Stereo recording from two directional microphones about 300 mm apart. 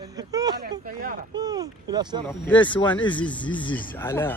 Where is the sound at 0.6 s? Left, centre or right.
Right.